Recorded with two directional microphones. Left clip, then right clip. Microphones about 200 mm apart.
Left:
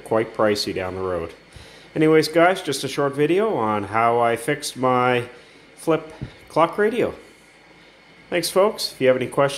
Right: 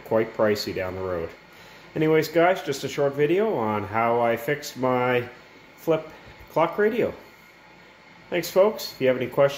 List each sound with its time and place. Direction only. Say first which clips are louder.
0.1 s speech: left 2 dB; 15° left (ahead or behind)
8.3 s speech: left 2 dB; 15° left (ahead or behind)